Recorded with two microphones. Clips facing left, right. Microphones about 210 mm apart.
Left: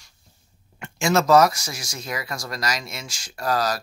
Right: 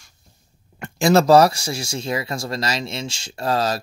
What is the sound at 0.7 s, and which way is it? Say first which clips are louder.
Speech: right 5 dB; 35° right (ahead or behind).